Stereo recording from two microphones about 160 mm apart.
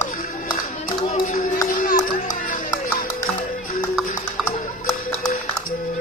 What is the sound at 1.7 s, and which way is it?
Music, 55° left (ahead or behind).